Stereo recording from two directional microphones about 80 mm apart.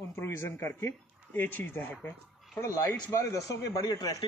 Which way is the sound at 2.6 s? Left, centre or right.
Left.